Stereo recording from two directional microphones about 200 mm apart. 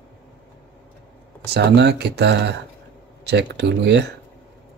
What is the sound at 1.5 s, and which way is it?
Speech, 55° right (ahead or behind).